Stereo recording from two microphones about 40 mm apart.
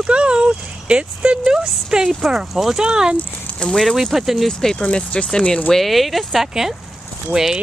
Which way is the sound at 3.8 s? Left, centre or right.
Centre.